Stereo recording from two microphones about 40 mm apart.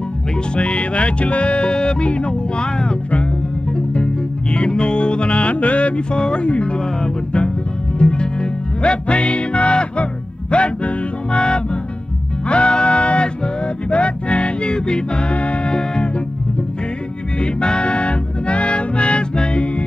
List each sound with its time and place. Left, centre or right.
0.6 s music: left
8.0 s music: left
17.4 s music: left